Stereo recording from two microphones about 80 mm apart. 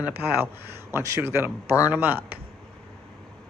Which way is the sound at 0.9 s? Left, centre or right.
Right.